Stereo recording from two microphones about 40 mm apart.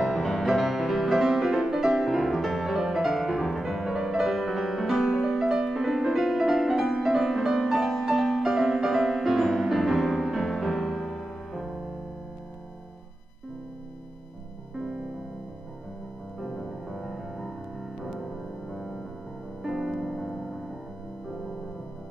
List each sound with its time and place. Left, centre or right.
0.0 s music: centre
14.8 s music: right
16.3 s music: centre